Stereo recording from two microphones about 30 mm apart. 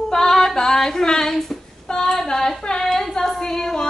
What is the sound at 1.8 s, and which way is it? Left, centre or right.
Child singing, left.